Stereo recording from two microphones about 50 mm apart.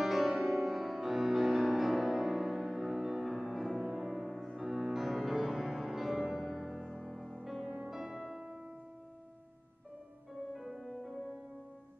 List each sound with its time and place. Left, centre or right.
0.0 s music: centre
7.4 s music: centre
10.5 s music: centre